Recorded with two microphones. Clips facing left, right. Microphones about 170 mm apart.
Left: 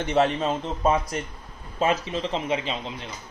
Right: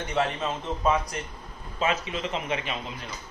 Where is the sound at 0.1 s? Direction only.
25° left (ahead or behind).